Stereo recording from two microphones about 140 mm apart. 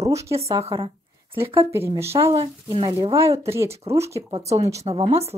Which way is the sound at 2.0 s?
20° right (ahead or behind).